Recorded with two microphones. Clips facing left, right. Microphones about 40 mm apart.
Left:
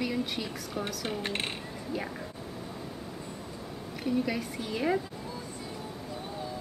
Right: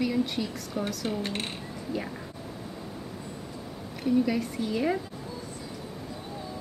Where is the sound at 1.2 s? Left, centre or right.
Left.